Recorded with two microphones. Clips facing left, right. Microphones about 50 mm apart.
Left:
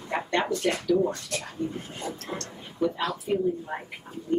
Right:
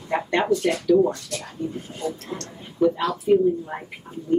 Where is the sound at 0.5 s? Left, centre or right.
Left.